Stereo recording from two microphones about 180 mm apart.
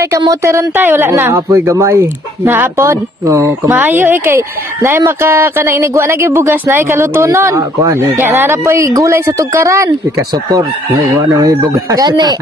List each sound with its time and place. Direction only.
0.0 s speech: 20° right (ahead or behind)